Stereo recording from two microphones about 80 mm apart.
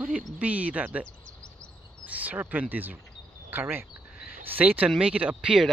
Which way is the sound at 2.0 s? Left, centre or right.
Centre.